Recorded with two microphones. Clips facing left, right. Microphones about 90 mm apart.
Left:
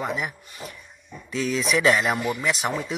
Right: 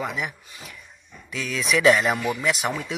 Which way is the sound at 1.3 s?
35° left (ahead or behind).